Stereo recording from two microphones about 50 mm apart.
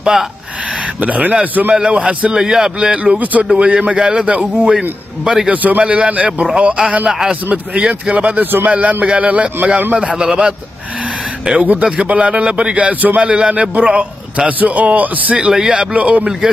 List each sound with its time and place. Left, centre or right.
0.0 s speech: centre
1.0 s a man's voice: right
1.7 s a man's voice: centre
2.3 s a man's voice: centre
3.0 s a man's voice: right; by 5.5 s centre
5.5 s a man's voice: right
7.1 s a man's voice: centre
7.4 s a man's voice: right
9.9 s a man's voice: right
11.5 s a man's voice: right
15.3 s a man's voice: centre
15.9 s a man's voice: right